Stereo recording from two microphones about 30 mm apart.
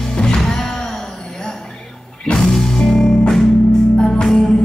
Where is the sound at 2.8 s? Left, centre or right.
Left.